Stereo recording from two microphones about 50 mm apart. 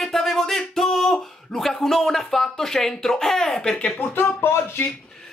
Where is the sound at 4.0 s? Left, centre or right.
Left.